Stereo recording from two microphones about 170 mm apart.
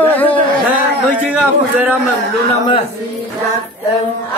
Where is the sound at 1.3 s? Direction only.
5° right (ahead or behind).